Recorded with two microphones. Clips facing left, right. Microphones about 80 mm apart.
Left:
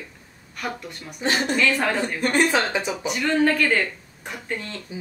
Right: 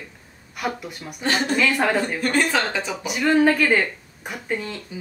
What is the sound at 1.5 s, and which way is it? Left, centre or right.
Speech, centre.